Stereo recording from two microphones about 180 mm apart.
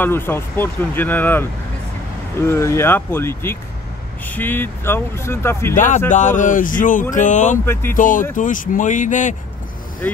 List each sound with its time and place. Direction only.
0.0 s speech: 10° left (ahead or behind)
6.0 s speech: 45° left (ahead or behind)
7.6 s speech: 15° left (ahead or behind)
7.9 s speech: 50° left (ahead or behind)
10.0 s speech: 10° left (ahead or behind)